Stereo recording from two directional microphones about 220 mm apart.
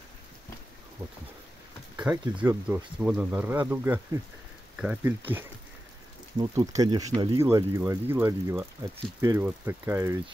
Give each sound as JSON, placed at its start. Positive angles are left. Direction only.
{"t": 2.1, "sound": "speech", "side_deg": -5}
{"t": 6.3, "sound": "speech", "side_deg": -20}